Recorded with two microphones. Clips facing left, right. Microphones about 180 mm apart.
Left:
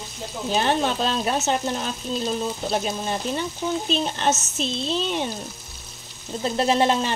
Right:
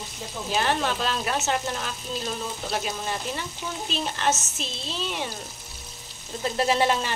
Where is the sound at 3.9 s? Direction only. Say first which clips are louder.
Left 1 dB; 25° left (ahead or behind).